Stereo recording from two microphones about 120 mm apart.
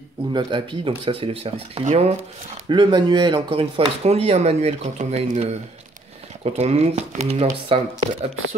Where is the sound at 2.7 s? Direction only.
40° right (ahead or behind); by 7.5 s 65° right (ahead or behind).